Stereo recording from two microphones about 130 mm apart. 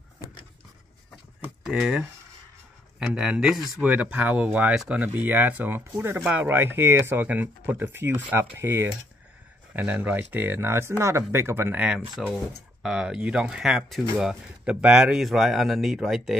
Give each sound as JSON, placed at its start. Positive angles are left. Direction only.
{"t": 1.6, "sound": "speech", "side_deg": -5}
{"t": 3.1, "sound": "speech", "side_deg": -10}
{"t": 8.5, "sound": "mechanisms", "side_deg": -20}
{"t": 9.8, "sound": "speech", "side_deg": -10}